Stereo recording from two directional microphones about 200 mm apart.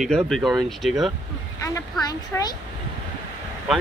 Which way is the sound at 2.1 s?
20° left (ahead or behind).